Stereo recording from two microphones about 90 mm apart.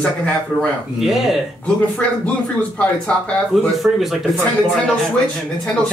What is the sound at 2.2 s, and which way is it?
Speech, 15° left (ahead or behind).